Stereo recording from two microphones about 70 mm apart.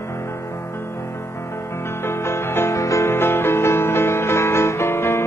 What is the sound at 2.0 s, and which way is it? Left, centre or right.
Music, left.